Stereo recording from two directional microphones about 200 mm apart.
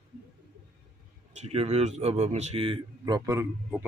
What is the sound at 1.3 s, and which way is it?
A man's voice, 30° right (ahead or behind).